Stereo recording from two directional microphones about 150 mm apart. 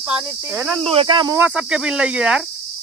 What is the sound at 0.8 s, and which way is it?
Speech, 40° right (ahead or behind).